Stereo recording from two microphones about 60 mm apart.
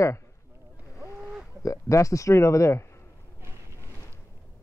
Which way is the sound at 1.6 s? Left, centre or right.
Left.